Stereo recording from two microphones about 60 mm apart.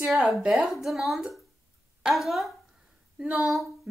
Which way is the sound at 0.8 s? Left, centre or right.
Centre.